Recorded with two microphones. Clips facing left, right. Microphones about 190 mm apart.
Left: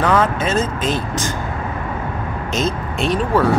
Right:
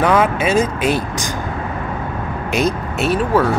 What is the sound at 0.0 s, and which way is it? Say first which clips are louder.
Speech: right 2 dB; 10° right (ahead or behind).